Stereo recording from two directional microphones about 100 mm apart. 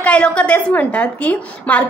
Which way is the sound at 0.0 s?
15° left (ahead or behind).